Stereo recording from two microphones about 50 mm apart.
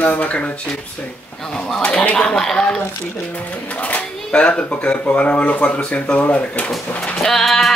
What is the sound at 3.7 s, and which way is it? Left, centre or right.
Speech, left.